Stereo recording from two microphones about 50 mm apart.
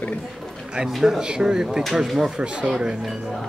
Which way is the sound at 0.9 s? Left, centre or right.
Centre.